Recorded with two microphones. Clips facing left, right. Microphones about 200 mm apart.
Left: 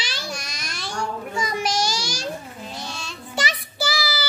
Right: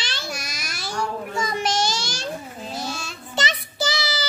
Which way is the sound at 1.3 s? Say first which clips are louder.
Even; 10° left (ahead or behind).